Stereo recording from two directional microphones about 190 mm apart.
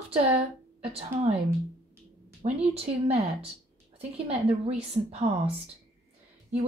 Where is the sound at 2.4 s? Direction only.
30° right (ahead or behind).